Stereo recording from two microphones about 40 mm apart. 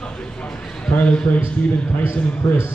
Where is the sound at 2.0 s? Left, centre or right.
Left.